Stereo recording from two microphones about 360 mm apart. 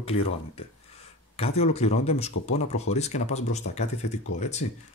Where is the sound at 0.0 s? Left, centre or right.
Centre.